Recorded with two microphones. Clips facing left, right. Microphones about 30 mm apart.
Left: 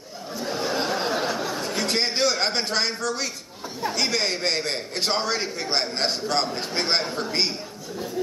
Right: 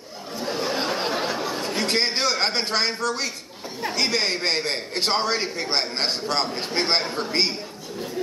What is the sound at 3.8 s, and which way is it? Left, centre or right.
A man's voice, centre.